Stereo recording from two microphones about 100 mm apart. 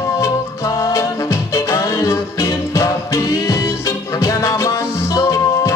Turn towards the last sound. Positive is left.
turn(degrees=30)  # may be behind; listen again after turning